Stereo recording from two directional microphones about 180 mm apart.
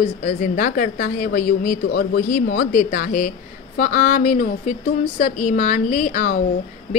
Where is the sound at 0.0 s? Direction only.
45° left (ahead or behind).